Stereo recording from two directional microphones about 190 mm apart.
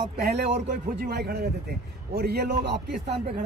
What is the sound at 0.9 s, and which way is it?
A man's voice, 55° right (ahead or behind).